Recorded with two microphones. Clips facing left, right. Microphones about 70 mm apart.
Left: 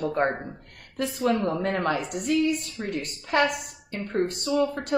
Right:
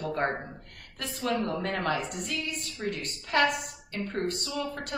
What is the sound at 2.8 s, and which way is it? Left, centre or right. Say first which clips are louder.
Speech: left 1 dB; centre.